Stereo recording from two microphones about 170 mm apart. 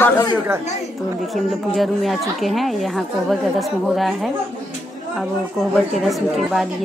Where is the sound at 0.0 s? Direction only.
15° left (ahead or behind).